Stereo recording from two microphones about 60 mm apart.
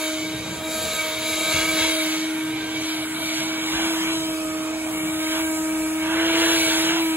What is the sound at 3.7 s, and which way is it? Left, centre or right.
Vacuum cleaner, right.